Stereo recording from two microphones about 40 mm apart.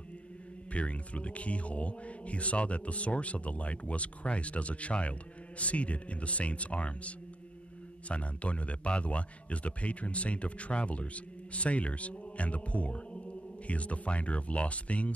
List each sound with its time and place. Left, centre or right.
0.7 s speech: left